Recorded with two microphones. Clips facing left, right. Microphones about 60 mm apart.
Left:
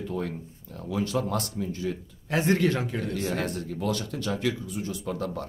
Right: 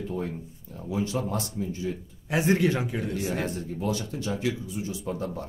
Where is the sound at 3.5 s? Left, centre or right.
Left.